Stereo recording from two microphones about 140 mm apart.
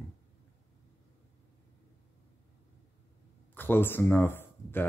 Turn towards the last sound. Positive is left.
turn(degrees=15)  # may be behind; listen again after turning